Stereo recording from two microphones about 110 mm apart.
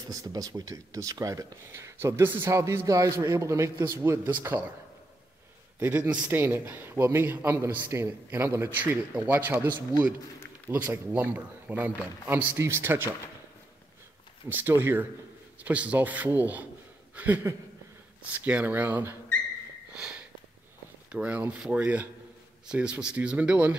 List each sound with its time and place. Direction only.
0.1 s speech: 35° right (ahead or behind); by 4.6 s 20° right (ahead or behind)
5.8 s speech: 20° right (ahead or behind)
14.5 s speech: 20° right (ahead or behind)
17.1 s a sound: 15° right (ahead or behind)
18.3 s speech: 15° right (ahead or behind)
19.9 s sniff: 10° right (ahead or behind)
21.1 s speech: 15° right (ahead or behind)